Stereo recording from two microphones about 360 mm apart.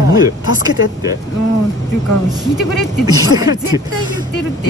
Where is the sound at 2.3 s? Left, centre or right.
Centre.